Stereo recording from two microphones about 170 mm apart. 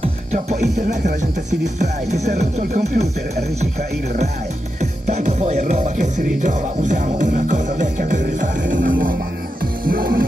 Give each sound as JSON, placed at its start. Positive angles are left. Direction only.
{"t": 0.0, "sound": "music", "side_deg": -40}
{"t": 4.7, "sound": "music", "side_deg": -40}